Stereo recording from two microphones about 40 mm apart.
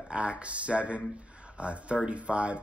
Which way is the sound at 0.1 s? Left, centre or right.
Right.